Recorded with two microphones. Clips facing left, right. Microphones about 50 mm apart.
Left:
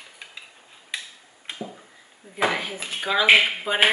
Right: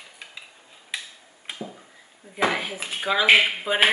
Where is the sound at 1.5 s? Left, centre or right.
Centre.